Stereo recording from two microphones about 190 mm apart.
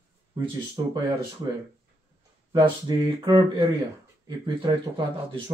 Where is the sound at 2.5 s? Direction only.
25° right (ahead or behind).